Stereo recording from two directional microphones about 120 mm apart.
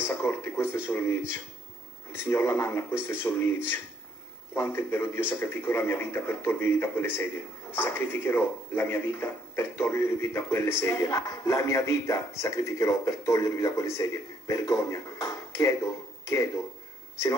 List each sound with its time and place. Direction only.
0.0 s speech: 20° left (ahead or behind)
2.2 s speech: 20° left (ahead or behind)